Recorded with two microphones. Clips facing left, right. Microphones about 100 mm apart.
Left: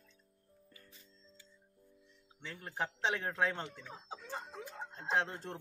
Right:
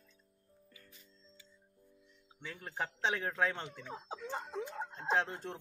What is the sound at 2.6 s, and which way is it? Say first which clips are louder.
Speech: even; centre (ahead or behind).